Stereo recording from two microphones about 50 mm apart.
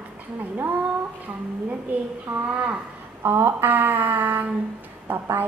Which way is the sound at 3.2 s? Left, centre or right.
Right.